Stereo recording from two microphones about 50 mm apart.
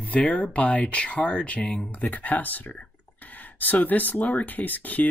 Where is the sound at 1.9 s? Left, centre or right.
Left.